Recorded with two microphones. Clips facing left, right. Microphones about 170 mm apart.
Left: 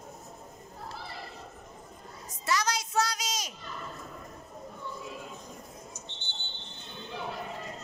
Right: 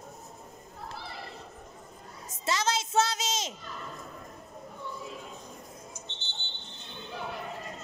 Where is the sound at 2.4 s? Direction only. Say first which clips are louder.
Right 1 dB; 25° right (ahead or behind).